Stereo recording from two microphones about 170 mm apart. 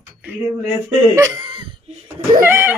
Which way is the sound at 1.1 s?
20° right (ahead or behind).